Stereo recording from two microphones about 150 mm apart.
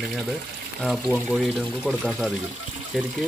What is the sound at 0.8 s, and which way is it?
Speech, centre (ahead or behind).